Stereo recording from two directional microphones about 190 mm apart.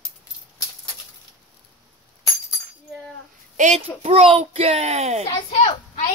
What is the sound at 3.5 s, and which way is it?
A child's voice, 40° right (ahead or behind).